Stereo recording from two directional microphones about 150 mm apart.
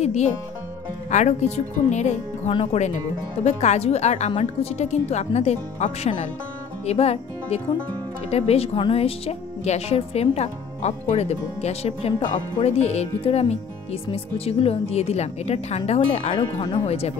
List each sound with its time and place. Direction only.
0.0 s speech: 50° left (ahead or behind)